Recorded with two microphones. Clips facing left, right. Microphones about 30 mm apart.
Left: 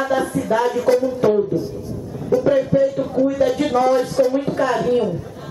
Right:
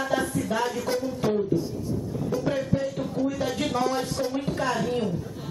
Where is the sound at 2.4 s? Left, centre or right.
Centre.